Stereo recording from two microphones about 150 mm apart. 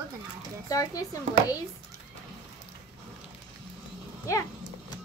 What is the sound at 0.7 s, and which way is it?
Speech, 25° left (ahead or behind).